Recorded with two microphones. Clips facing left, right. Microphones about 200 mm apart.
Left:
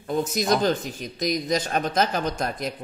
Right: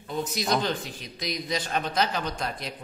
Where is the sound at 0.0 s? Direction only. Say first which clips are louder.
Left 5 dB; 50° left (ahead or behind).